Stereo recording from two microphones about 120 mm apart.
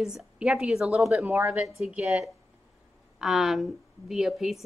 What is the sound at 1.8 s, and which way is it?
A woman's voice, 5° right (ahead or behind).